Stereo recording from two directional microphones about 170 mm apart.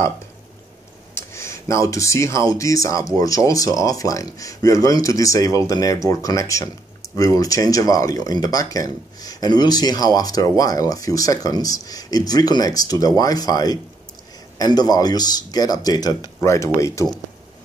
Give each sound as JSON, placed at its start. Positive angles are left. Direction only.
{"t": 1.1, "sound": "speech", "side_deg": 15}